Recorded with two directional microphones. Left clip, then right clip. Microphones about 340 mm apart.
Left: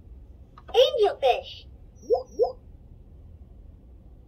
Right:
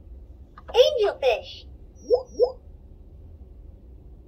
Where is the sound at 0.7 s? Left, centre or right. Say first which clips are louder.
Right 1 dB; centre.